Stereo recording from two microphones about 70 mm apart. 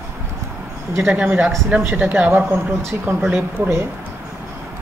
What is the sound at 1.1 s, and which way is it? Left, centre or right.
Speech, right.